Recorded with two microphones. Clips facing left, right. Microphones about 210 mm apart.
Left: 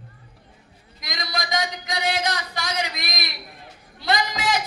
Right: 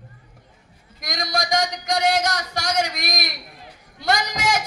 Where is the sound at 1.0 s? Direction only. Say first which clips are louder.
Right 5 dB; 45° right (ahead or behind).